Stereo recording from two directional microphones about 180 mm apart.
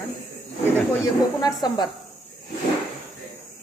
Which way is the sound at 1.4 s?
20° left (ahead or behind).